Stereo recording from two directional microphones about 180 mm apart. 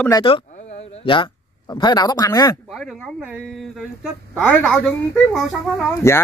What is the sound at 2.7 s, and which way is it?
Speech, centre (ahead or behind).